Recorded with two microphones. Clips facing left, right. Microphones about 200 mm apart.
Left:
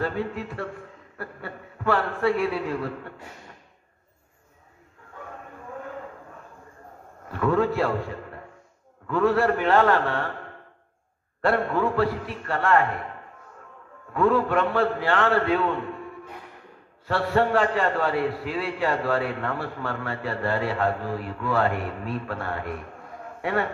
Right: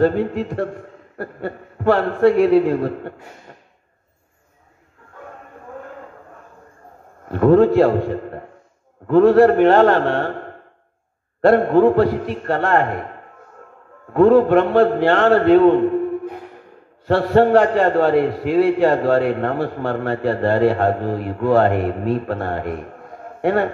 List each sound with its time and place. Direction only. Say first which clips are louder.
0.0 s a man's voice: right 11 dB; 50° right (ahead or behind)
7.2 s a man's voice: right 10 dB; 50° right (ahead or behind)
11.5 s a man's voice: right 11 dB; 40° right (ahead or behind)
14.3 s a man's voice: right 10 dB; 55° right (ahead or behind)
17.2 s a man's voice: right 8 dB; 50° right (ahead or behind)
19.3 s a man's voice: right 9 dB; 40° right (ahead or behind)